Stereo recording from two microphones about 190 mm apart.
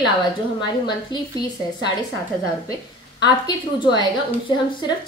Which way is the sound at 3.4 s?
25° left (ahead or behind).